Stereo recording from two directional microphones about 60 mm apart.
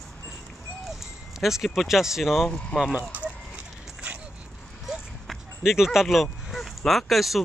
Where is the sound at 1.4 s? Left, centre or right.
Centre.